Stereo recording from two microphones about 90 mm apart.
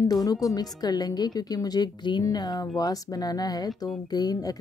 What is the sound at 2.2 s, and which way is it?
Speech, 45° left (ahead or behind).